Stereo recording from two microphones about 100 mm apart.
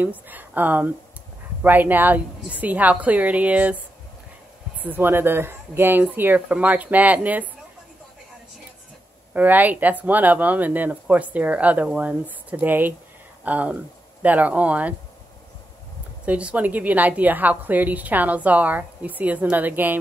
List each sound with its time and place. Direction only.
0.0 s a woman's voice: 15° right (ahead or behind)
4.8 s speech: 20° right (ahead or behind)
9.3 s a woman's voice: 15° right (ahead or behind)
16.3 s a woman's voice: 15° right (ahead or behind)